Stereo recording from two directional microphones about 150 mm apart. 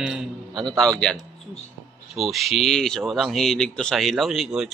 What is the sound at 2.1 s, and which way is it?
Speech, centre (ahead or behind).